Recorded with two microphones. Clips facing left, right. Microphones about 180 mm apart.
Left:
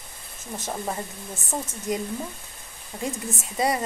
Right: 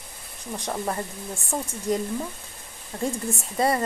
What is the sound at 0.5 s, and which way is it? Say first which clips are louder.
Speech: right 2 dB; 5° left (ahead or behind).